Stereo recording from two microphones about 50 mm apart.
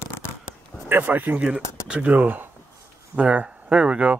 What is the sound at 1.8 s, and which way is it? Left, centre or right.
Speech, right.